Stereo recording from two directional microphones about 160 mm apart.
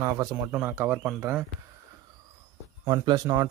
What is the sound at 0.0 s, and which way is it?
Speech, 20° right (ahead or behind).